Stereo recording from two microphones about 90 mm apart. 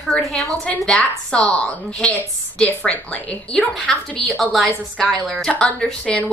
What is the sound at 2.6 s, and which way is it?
Speech, 15° left (ahead or behind).